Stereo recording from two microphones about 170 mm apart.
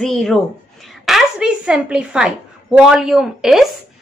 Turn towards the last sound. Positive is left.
turn(degrees=0)  # may be behind; listen again after turning